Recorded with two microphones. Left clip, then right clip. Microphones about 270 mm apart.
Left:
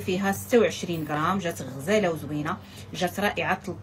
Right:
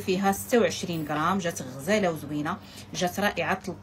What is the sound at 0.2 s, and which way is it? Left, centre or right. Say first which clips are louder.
A woman's voice: left 2 dB; centre.